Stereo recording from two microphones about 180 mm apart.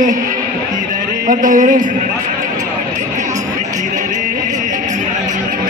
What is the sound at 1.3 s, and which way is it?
Speech, 45° right (ahead or behind).